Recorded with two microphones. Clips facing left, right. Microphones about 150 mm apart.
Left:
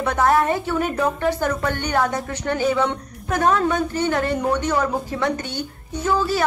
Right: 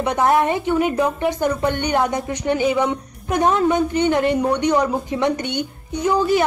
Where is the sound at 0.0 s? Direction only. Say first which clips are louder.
Right 1 dB; 20° right (ahead or behind).